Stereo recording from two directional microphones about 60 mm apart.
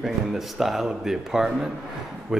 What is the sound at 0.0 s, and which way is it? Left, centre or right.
Speech, centre.